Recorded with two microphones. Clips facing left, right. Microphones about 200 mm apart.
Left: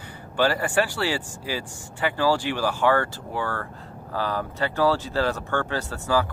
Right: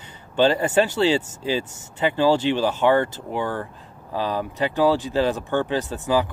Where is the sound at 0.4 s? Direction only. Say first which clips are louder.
Right 4 dB; 20° right (ahead or behind).